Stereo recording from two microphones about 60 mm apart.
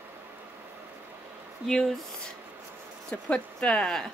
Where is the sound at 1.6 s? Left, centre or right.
Centre.